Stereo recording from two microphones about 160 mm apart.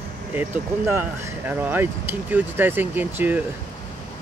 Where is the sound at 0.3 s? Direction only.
10° right (ahead or behind).